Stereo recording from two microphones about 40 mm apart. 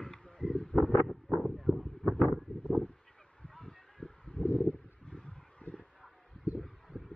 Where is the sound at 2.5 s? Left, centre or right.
Left.